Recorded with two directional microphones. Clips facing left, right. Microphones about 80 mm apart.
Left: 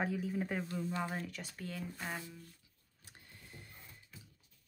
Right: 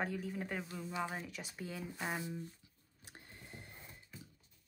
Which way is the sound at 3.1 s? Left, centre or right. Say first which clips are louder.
Right 3 dB; right.